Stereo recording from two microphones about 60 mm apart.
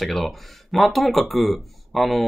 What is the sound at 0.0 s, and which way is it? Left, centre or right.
Speech, centre.